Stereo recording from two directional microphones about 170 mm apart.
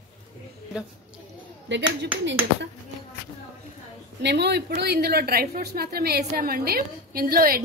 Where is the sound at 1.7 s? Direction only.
90° right.